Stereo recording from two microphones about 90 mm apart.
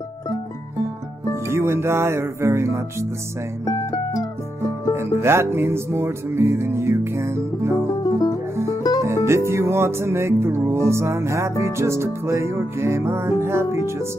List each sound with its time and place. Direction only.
1.3 s music: 30° right (ahead or behind)
3.6 s music: 45° left (ahead or behind)
4.9 s music: 25° right (ahead or behind)
8.0 s music: 40° left (ahead or behind)
9.0 s music: 30° right (ahead or behind)